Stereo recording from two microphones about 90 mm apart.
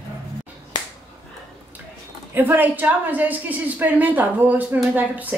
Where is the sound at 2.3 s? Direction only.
20° right (ahead or behind).